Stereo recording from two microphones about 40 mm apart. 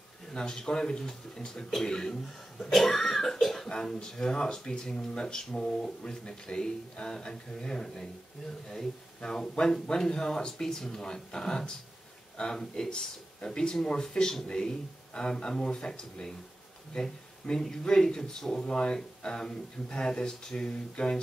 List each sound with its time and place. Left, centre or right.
0.3 s speech: centre
3.3 s cough: centre
3.6 s speech: left